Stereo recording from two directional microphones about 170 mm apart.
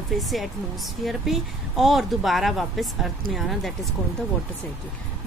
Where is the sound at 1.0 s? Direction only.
Centre (ahead or behind).